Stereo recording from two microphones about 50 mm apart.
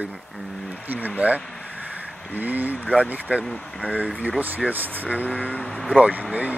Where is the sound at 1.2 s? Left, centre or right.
Right.